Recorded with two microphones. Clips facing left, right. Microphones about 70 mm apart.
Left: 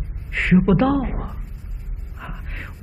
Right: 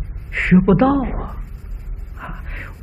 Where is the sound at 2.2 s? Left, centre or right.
Centre.